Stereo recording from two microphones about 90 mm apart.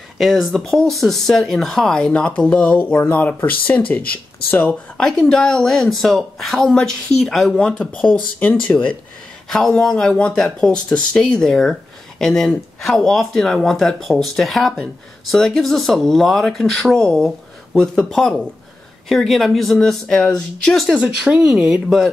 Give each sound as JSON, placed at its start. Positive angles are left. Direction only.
{"t": 0.2, "sound": "speech", "side_deg": 0}
{"t": 4.9, "sound": "speech", "side_deg": 5}
{"t": 9.5, "sound": "speech", "side_deg": 5}
{"t": 20.9, "sound": "speech", "side_deg": -10}